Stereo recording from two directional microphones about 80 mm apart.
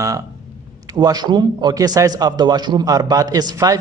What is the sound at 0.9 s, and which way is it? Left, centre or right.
Speech, right.